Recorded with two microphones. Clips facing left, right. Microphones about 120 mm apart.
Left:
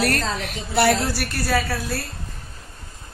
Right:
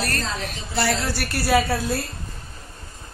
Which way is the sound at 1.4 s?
20° right (ahead or behind).